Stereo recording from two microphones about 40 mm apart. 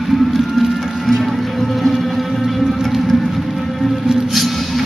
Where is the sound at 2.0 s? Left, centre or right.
Centre.